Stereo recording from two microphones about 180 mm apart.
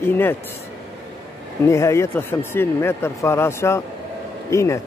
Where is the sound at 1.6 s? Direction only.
15° left (ahead or behind).